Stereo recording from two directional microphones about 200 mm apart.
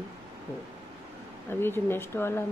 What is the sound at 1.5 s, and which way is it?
Speech, 10° left (ahead or behind).